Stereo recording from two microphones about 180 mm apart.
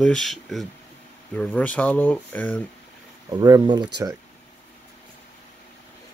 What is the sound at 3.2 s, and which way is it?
Speech, 20° right (ahead or behind).